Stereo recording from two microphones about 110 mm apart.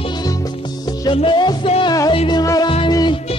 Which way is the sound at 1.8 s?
35° left (ahead or behind).